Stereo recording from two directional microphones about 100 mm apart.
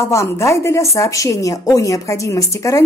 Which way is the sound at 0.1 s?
30° left (ahead or behind).